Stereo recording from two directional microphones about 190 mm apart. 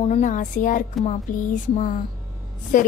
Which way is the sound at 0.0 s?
40° left (ahead or behind).